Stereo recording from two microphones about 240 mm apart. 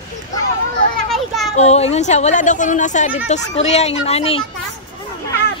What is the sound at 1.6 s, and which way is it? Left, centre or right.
A woman's voice, left.